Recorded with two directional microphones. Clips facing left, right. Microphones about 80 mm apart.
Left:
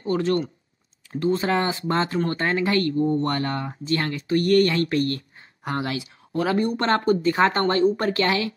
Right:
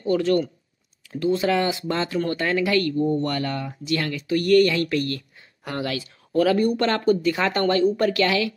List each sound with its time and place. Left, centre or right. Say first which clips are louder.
0.0 s speech: right 2 dB; left